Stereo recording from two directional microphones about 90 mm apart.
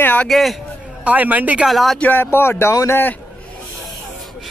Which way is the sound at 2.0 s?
20° left (ahead or behind).